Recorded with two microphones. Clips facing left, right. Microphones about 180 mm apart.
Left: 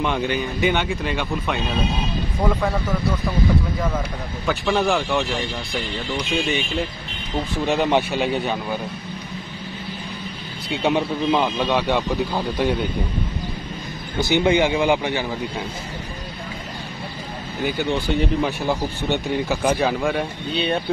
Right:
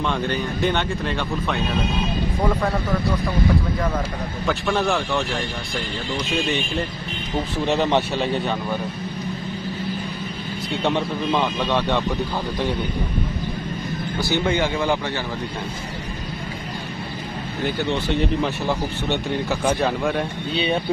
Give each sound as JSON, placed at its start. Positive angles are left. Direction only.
{"t": 0.0, "sound": "speech", "side_deg": 10}
{"t": 4.5, "sound": "speech", "side_deg": 0}
{"t": 7.6, "sound": "a man's voice", "side_deg": 5}
{"t": 10.8, "sound": "a man's voice", "side_deg": 5}
{"t": 14.2, "sound": "a man's voice", "side_deg": 15}
{"t": 17.6, "sound": "speech", "side_deg": 5}